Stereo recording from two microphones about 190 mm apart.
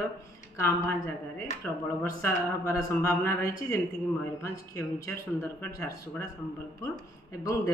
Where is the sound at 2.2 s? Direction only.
15° left (ahead or behind).